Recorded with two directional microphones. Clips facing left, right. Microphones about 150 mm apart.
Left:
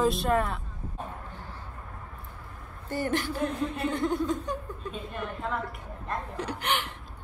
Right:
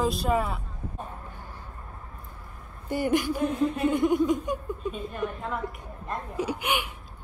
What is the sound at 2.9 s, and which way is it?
Speech, 15° right (ahead or behind).